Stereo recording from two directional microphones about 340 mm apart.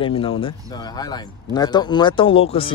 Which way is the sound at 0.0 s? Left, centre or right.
Centre.